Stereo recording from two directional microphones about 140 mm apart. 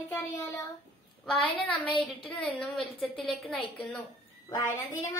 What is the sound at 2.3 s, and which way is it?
A woman's voice, 5° left (ahead or behind).